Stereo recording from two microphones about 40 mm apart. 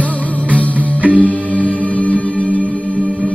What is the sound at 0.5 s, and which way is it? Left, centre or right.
Music, left.